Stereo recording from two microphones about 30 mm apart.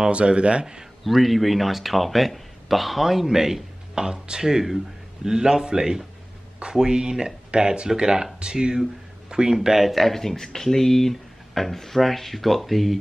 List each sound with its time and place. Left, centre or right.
0.1 s speech: right
1.0 s speech: centre
3.9 s speech: right
9.8 s speech: centre